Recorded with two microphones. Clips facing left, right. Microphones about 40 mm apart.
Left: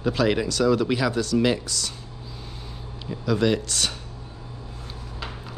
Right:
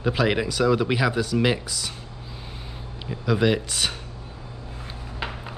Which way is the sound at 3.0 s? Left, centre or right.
Centre.